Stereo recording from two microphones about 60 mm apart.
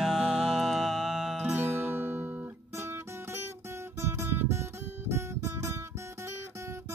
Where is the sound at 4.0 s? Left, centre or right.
Right.